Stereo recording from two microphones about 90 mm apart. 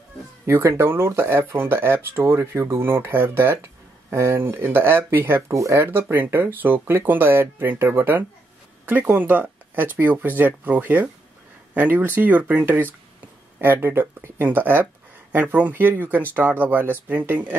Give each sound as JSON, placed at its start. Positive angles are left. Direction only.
{"t": 0.5, "sound": "speech", "side_deg": -30}
{"t": 5.9, "sound": "speech", "side_deg": -25}